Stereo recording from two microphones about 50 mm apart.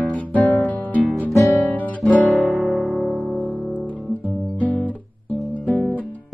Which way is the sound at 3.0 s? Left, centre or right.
Left.